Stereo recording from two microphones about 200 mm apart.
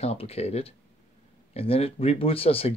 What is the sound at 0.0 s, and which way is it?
Speech, 30° left (ahead or behind).